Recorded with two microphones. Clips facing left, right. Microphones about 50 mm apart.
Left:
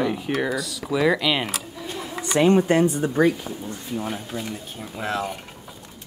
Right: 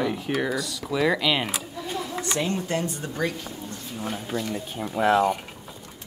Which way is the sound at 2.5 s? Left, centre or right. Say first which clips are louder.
Left 9 dB; left.